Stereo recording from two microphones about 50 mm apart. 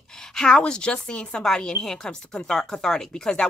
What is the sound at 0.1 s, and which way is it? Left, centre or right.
A woman's voice, centre.